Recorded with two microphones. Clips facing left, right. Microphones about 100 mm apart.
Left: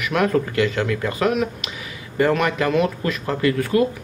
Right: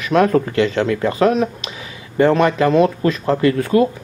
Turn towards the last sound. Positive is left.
turn(degrees=-25)  # may be behind; listen again after turning